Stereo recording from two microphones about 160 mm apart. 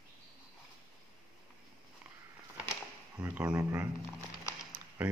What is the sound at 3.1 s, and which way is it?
Speech, 10° right (ahead or behind).